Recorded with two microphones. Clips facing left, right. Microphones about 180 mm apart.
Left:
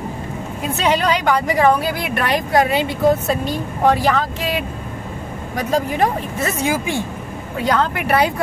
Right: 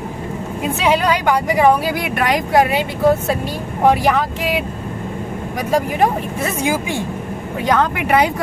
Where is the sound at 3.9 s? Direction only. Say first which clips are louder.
Right 1 dB; 15° right (ahead or behind).